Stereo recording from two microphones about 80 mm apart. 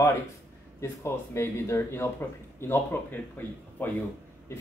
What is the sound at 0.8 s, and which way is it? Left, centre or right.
A man's voice, left.